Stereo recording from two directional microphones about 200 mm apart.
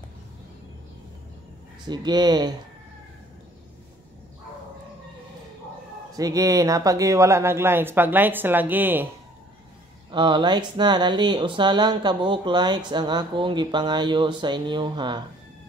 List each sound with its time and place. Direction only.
1.9 s speech: 20° right (ahead or behind)
6.1 s speech: 15° right (ahead or behind)
10.1 s speech: 25° right (ahead or behind)